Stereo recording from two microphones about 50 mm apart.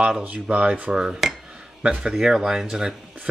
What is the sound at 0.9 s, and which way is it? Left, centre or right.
Speech, centre.